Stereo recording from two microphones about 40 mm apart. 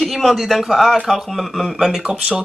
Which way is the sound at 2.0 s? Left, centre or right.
Right.